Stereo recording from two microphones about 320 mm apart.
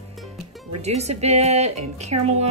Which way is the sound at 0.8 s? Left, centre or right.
Centre.